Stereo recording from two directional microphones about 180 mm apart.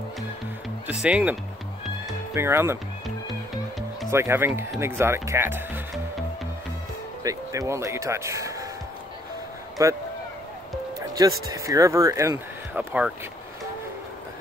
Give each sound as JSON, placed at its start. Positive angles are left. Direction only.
{"t": 1.0, "sound": "speech", "side_deg": -5}
{"t": 2.3, "sound": "speech", "side_deg": -15}
{"t": 4.1, "sound": "speech", "side_deg": -15}
{"t": 7.2, "sound": "speech", "side_deg": -15}
{"t": 9.8, "sound": "speech", "side_deg": -20}
{"t": 11.0, "sound": "speech", "side_deg": -20}